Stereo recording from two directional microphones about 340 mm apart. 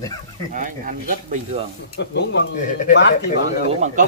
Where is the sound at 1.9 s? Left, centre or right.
Left.